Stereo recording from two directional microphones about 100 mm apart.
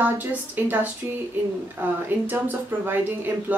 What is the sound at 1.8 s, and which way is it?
A woman's voice, 20° right (ahead or behind).